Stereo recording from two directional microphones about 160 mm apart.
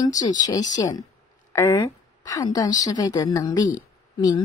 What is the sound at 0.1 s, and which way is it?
A woman's voice, 25° left (ahead or behind).